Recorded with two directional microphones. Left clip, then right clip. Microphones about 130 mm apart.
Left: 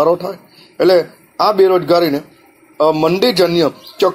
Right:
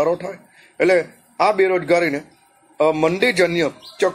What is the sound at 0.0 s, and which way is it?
A man's voice, 25° left (ahead or behind).